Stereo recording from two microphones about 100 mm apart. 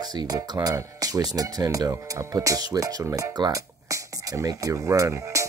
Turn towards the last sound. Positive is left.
turn(degrees=-30)  # may be behind; listen again after turning